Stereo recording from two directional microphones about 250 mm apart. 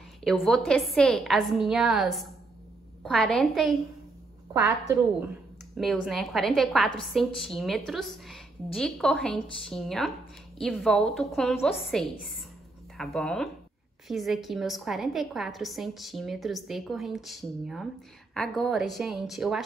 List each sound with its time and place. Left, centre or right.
0.2 s a woman's voice: centre
5.8 s a woman's voice: centre